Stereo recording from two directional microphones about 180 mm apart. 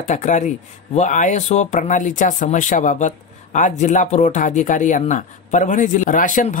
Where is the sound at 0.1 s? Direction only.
40° left (ahead or behind).